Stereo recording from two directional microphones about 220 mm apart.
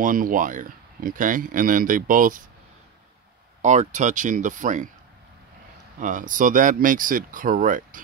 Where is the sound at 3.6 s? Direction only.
35° right (ahead or behind).